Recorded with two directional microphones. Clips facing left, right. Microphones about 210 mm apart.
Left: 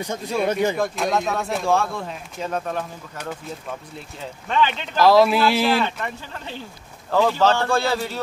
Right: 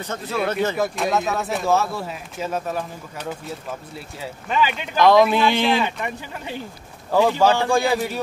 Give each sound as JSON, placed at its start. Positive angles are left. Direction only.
{"t": 0.0, "sound": "speech", "side_deg": 10}
{"t": 0.7, "sound": "speech", "side_deg": -5}
{"t": 4.9, "sound": "speech", "side_deg": 5}
{"t": 5.8, "sound": "speech", "side_deg": -15}